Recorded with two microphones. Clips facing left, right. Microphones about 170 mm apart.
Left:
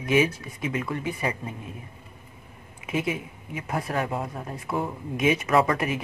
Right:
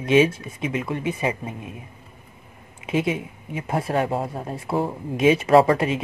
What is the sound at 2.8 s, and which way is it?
Speech, 25° right (ahead or behind).